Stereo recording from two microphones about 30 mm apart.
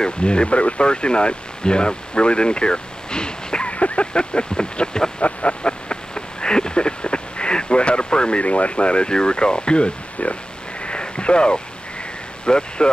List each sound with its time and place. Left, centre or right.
0.0 s speech: left
3.6 s speech: left
5.2 s a sound: left
8.4 s speech: left
10.8 s a sound: left
12.4 s speech: left